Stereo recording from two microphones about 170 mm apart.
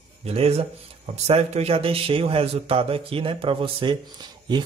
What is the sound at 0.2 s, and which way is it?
A man's voice, 35° right (ahead or behind).